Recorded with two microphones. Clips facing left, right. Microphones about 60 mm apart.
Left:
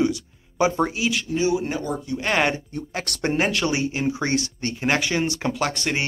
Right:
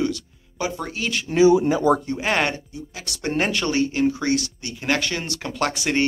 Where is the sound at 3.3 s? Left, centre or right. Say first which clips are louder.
Right 1 dB; centre.